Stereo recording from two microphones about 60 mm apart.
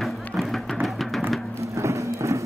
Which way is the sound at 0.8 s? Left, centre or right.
Centre.